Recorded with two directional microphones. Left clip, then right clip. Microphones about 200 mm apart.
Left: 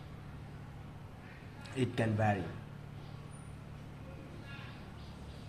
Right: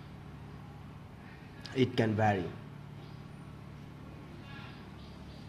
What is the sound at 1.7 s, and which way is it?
Speech, 30° right (ahead or behind).